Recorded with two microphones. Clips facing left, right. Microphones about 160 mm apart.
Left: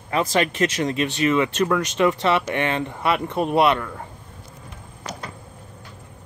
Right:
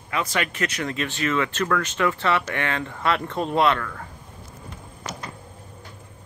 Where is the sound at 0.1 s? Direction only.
25° left (ahead or behind).